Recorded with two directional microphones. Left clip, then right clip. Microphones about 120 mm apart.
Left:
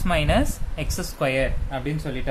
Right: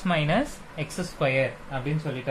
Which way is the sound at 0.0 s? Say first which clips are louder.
Left 3 dB; 20° left (ahead or behind).